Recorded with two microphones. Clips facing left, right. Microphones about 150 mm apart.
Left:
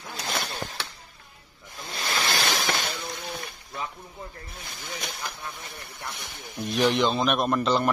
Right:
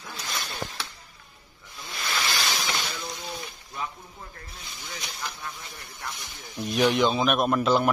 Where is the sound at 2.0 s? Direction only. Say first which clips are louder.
Left 2 dB; 45° left (ahead or behind).